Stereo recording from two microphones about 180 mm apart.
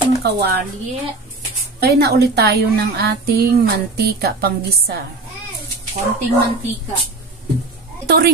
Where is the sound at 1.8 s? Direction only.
60° right (ahead or behind).